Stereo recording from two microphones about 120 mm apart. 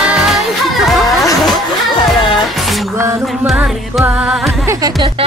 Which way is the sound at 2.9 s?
25° right (ahead or behind).